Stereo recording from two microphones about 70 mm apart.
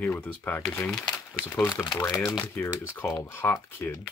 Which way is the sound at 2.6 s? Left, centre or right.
Left.